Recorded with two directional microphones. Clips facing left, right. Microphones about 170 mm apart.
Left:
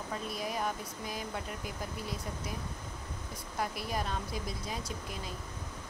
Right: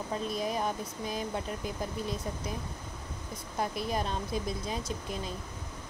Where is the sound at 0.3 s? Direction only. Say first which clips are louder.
Right 2 dB; 25° right (ahead or behind).